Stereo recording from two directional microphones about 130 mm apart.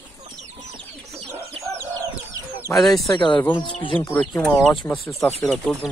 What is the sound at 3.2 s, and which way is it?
Speech, 35° left (ahead or behind).